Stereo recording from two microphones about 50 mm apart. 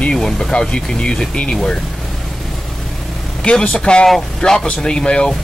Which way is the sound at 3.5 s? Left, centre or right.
Left.